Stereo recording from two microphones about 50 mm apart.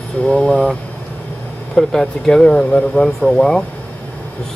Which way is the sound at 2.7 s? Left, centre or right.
Left.